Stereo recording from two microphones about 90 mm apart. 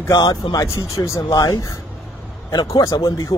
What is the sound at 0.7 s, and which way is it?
Speech, 35° left (ahead or behind).